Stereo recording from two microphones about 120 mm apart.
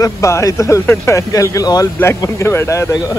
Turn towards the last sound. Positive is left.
turn(degrees=25)  # may be behind; listen again after turning